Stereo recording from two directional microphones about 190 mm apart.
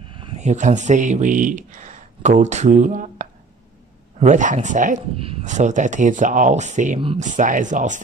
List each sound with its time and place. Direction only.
0.1 s speech: 30° right (ahead or behind)